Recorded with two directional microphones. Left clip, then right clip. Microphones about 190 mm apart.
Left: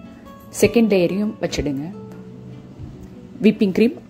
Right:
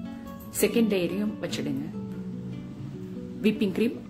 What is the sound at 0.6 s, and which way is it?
Speech, 30° left (ahead or behind).